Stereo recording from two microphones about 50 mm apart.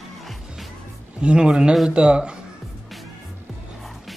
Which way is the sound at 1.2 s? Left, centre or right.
Centre.